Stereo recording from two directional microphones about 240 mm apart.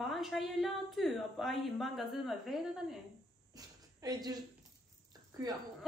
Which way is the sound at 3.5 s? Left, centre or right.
Centre.